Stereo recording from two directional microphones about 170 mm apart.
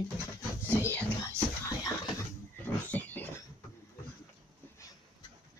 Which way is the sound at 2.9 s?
10° left (ahead or behind).